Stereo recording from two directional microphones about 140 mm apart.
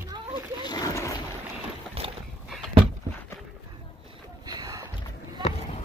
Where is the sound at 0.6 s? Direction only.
25° left (ahead or behind).